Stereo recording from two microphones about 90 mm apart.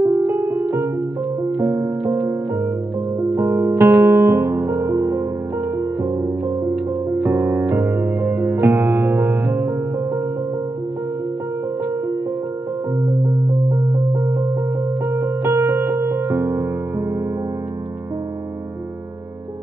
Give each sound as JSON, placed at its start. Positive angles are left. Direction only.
{"t": 0.0, "sound": "music", "side_deg": -45}
{"t": 0.3, "sound": "music", "side_deg": -35}
{"t": 2.0, "sound": "music", "side_deg": -30}
{"t": 7.1, "sound": "keyboard", "side_deg": -25}
{"t": 7.7, "sound": "music", "side_deg": -30}
{"t": 14.1, "sound": "music", "side_deg": -35}